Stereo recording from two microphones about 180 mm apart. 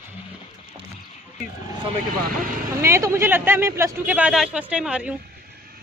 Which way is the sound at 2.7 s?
15° right (ahead or behind).